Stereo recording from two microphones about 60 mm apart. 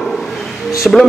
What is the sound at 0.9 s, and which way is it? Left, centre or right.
Speech, centre.